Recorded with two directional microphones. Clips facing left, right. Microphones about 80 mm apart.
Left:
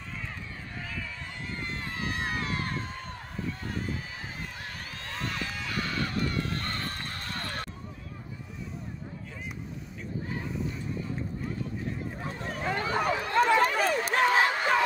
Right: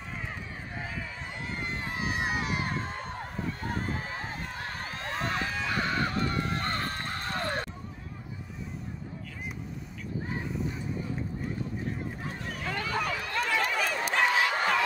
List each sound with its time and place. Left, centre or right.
0.7 s run: right
2.8 s a sound: right
6.6 s neigh: right
12.4 s run: left